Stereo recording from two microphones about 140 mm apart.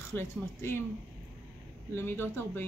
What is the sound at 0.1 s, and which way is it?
Speech, 15° left (ahead or behind).